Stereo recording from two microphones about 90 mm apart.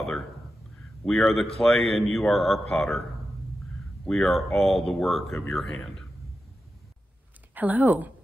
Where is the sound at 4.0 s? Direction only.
5° left (ahead or behind).